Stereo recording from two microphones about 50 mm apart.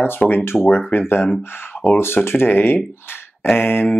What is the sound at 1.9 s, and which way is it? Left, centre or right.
Speech, left.